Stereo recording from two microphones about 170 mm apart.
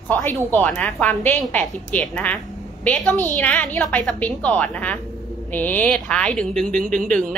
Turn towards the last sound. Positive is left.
turn(degrees=5)  # may be behind; listen again after turning